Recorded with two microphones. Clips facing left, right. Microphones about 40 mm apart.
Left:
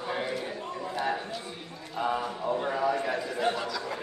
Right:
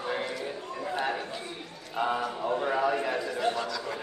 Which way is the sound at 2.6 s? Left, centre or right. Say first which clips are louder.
Right 2 dB; right.